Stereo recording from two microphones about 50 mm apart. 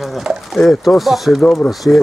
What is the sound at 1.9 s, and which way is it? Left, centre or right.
Speech, left.